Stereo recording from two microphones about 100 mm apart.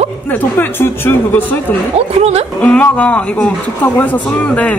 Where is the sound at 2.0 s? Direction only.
90° right.